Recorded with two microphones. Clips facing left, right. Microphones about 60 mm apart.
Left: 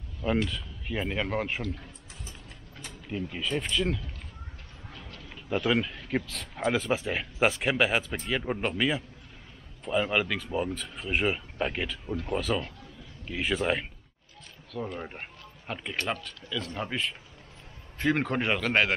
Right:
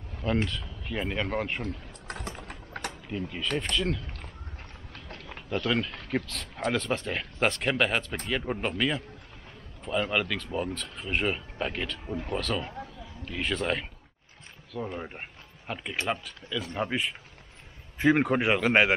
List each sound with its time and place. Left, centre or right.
0.5 s speech: centre
2.0 s vehicle: right
2.9 s speech: centre
5.5 s speech: centre
15.0 s speech: centre